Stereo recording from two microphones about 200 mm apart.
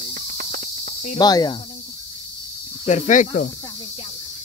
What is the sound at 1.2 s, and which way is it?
Speech, 20° left (ahead or behind).